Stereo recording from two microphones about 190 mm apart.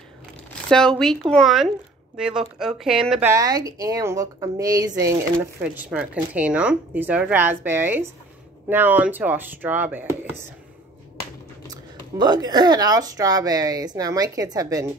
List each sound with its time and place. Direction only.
0.7 s speech: 5° left (ahead or behind)
3.3 s a woman's voice: 20° right (ahead or behind)
11.6 s speech: 20° right (ahead or behind)